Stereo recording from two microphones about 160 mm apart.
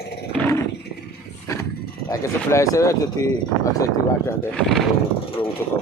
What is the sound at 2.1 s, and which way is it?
Speech, 20° left (ahead or behind).